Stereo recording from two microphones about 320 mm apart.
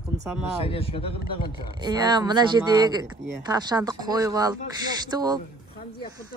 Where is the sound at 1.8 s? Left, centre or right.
Centre.